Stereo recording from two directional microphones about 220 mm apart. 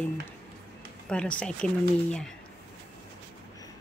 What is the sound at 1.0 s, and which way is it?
Speech, 5° left (ahead or behind).